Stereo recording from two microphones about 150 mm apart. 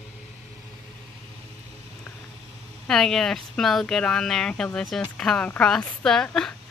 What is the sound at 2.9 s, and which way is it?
Speech, 5° left (ahead or behind).